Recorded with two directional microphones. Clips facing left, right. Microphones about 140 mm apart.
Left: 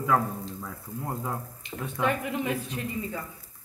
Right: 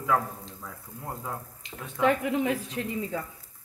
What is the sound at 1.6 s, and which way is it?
Speech, 90° right.